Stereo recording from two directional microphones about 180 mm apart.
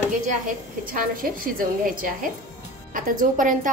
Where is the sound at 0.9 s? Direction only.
50° right (ahead or behind).